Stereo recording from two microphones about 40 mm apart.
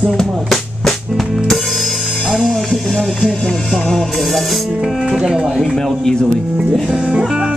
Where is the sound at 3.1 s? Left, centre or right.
Left.